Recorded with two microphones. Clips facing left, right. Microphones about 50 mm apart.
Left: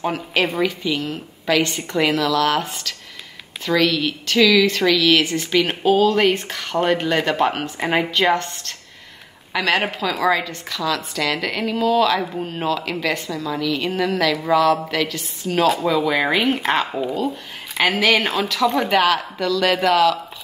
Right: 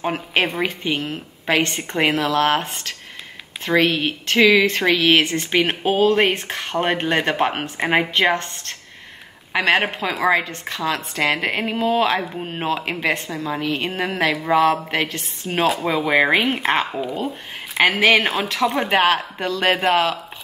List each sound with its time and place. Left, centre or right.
0.0 s speech: right
7.8 s speech: right
8.1 s speech: right
17.8 s speech: right